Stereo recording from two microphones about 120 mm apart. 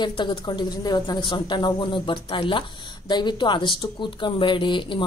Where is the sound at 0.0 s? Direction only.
40° left (ahead or behind).